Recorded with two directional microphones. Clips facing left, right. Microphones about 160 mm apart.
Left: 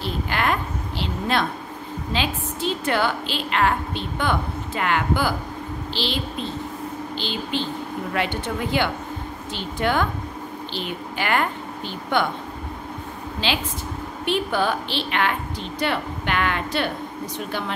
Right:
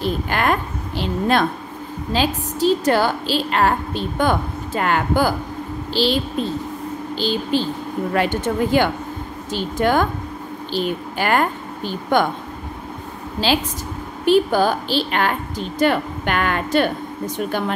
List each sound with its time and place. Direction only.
0.0 s a sound: 45° right (ahead or behind)
2.1 s a woman's voice: 40° right (ahead or behind)
13.4 s a woman's voice: 40° right (ahead or behind)